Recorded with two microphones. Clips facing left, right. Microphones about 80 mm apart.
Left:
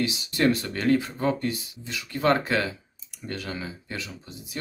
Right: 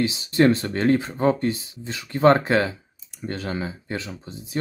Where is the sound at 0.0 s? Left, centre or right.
Right.